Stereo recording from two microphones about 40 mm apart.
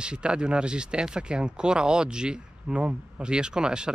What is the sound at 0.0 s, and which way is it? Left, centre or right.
Speech, right.